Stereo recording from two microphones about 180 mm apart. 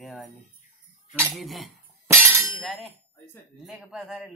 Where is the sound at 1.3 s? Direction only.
Centre (ahead or behind).